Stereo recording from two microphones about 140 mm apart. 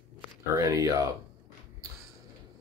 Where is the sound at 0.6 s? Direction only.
25° right (ahead or behind).